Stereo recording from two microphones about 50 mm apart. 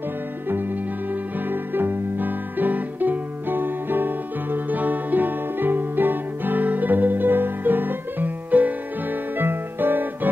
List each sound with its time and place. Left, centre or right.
1.5 s music: right
9.4 s music: right